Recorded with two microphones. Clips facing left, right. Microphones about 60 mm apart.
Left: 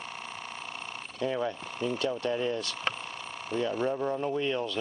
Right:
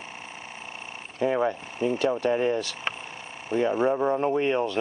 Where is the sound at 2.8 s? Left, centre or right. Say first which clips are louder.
Even; centre.